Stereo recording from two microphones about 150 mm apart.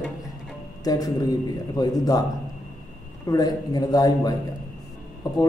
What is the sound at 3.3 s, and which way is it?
A man's voice, 25° left (ahead or behind).